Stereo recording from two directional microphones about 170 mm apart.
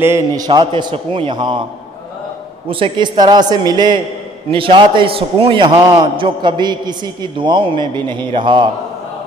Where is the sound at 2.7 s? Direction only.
30° right (ahead or behind).